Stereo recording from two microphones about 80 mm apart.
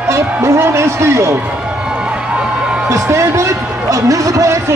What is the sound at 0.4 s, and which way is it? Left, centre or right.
A man's voice, right.